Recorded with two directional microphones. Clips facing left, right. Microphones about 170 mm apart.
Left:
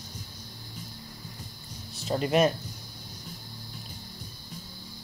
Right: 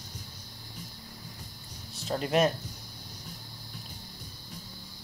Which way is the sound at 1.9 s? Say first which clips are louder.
Left 3 dB; centre (ahead or behind).